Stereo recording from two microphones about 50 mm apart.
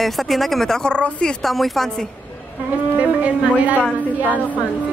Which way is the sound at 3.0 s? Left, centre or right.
Right.